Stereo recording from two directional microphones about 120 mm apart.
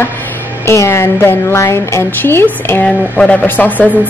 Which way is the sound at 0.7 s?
20° left (ahead or behind).